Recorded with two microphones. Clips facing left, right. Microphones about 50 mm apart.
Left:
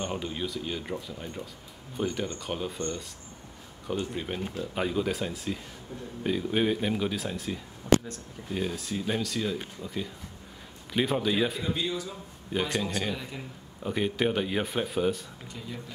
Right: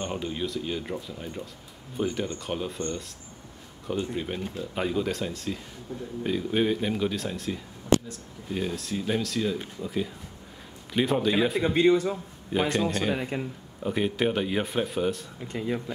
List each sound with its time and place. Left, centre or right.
0.0 s speech: centre
11.6 s a man's voice: right
12.5 s a man's voice: centre
13.1 s a man's voice: right
13.8 s speech: centre
15.4 s a man's voice: right